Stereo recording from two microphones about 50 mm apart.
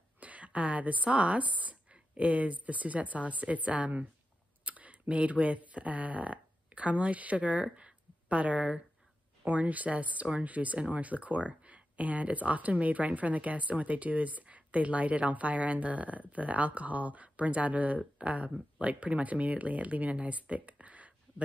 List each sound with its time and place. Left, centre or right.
0.2 s a woman's voice: right